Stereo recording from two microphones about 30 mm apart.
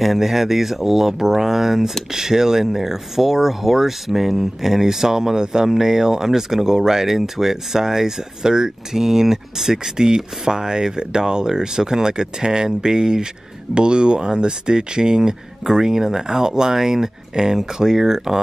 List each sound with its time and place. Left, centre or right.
0.0 s speech: centre